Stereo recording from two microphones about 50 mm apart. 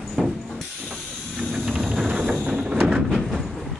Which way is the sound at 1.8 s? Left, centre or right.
Centre.